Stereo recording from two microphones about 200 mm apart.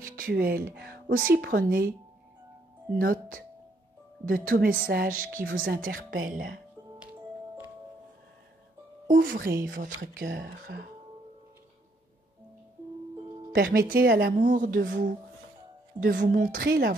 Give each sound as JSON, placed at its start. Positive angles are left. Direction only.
{"t": 0.0, "sound": "speech", "side_deg": -45}
{"t": 3.0, "sound": "a woman's voice", "side_deg": -45}
{"t": 9.0, "sound": "a woman's voice", "side_deg": -45}
{"t": 13.5, "sound": "a woman's voice", "side_deg": -50}